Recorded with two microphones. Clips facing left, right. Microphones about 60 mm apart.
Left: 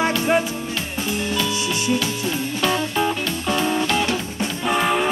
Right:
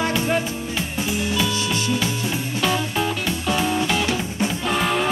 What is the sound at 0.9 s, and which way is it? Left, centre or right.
Music, centre.